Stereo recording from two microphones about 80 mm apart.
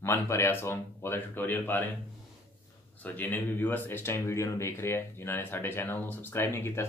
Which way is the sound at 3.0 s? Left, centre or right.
Left.